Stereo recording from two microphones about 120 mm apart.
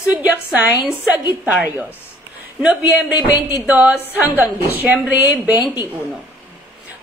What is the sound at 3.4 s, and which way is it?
Speech, 20° right (ahead or behind).